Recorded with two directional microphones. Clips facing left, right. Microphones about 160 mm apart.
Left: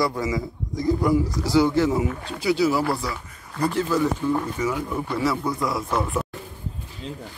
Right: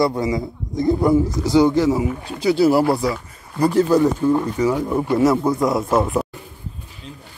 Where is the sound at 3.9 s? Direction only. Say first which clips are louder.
Right 6 dB; 40° right (ahead or behind).